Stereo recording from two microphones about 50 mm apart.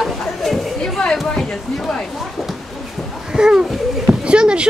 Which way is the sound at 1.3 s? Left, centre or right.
Centre.